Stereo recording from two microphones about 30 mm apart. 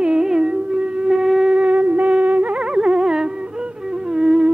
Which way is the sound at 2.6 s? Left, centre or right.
Right.